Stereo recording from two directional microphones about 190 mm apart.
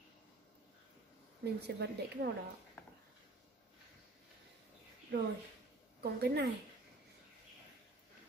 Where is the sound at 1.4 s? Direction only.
60° right (ahead or behind).